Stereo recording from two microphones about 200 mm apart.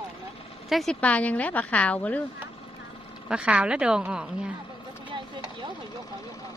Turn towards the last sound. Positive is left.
turn(degrees=-20)  # may be behind; listen again after turning